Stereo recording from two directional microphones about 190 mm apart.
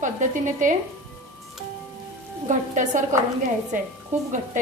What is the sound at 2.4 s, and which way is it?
Speech, 40° right (ahead or behind).